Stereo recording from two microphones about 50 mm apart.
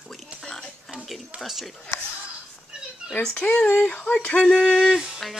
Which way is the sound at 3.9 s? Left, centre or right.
Left.